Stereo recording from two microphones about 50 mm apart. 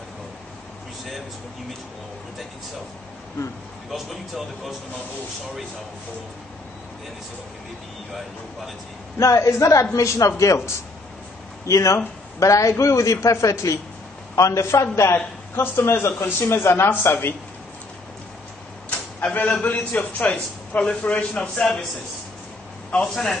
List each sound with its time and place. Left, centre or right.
3.9 s speech: centre
9.2 s a man's voice: left
16.1 s a man's voice: left
16.9 s speech: left
19.1 s a man's voice: left; by 21.6 s centre
23.1 s a man's voice: centre